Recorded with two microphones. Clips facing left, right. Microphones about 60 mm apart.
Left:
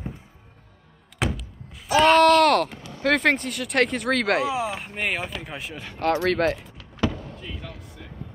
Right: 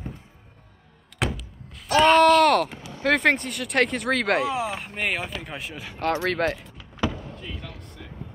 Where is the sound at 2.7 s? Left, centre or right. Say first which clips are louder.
Even; centre.